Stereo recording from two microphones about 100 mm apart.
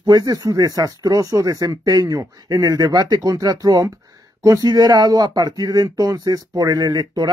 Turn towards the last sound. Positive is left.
turn(degrees=-45)  # may be behind; listen again after turning